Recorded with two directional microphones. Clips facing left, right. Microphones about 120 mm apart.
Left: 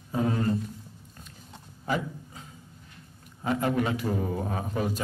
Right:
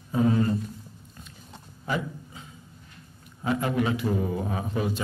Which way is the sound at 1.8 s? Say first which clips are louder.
Even; 40° left (ahead or behind).